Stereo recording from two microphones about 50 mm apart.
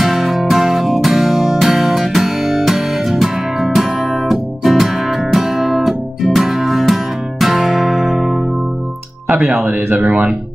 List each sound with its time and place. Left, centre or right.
0.0 s music: centre
9.7 s speech: right